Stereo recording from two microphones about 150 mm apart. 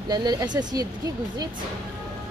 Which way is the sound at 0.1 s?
25° right (ahead or behind).